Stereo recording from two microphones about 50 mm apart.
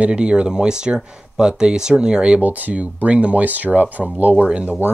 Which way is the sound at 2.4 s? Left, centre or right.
Right.